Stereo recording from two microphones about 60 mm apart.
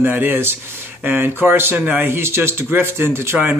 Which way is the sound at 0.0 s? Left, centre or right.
Right.